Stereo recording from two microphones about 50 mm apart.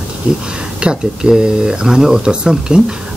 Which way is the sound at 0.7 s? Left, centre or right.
Centre.